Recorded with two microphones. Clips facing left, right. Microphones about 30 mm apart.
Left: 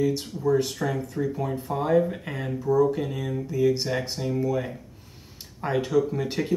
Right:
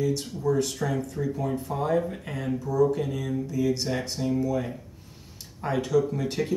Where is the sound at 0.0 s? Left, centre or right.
Centre.